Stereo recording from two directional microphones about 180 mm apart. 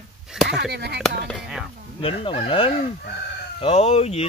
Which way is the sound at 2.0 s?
30° left (ahead or behind).